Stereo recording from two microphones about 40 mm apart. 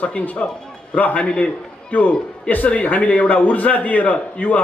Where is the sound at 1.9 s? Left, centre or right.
Left.